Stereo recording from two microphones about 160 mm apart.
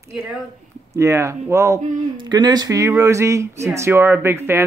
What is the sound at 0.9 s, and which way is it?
Speech, 20° right (ahead or behind).